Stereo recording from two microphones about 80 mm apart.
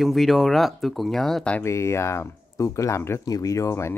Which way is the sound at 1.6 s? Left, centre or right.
Left.